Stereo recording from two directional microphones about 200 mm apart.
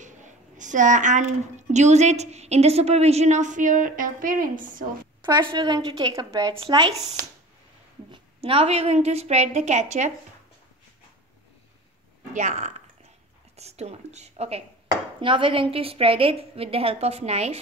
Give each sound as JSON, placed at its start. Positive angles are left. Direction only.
{"t": 0.0, "sound": "a woman's voice", "side_deg": -40}
{"t": 5.2, "sound": "a woman's voice", "side_deg": -25}
{"t": 8.1, "sound": "a woman's voice", "side_deg": -25}
{"t": 12.4, "sound": "a woman's voice", "side_deg": -35}